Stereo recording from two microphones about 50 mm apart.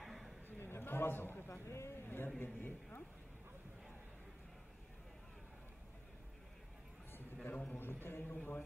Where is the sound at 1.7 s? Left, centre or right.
Left.